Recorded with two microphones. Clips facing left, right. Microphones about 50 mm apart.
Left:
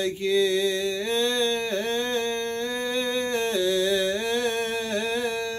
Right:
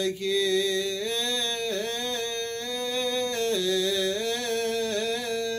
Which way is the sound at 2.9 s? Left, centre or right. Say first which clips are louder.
Left 1 dB; left.